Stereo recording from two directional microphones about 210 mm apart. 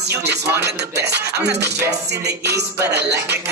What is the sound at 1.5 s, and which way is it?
Music, 50° right (ahead or behind).